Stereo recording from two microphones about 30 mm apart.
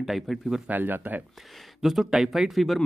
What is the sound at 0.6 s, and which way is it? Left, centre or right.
Speech, right.